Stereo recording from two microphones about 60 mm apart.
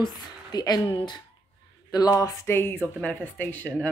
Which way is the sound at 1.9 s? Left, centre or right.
Left.